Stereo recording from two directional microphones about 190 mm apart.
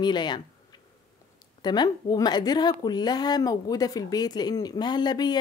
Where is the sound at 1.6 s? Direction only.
20° left (ahead or behind).